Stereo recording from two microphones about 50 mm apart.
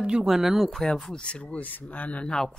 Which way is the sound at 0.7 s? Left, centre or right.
Centre.